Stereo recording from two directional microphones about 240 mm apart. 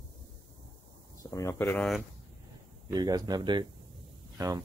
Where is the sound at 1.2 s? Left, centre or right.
Centre.